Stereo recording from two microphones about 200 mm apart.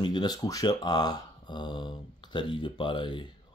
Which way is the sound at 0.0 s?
20° left (ahead or behind).